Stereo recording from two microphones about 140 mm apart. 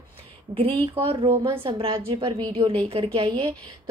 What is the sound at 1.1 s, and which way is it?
A woman's voice, 40° right (ahead or behind).